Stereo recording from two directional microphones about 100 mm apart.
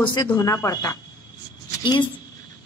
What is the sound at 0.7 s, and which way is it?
Speech, 35° left (ahead or behind).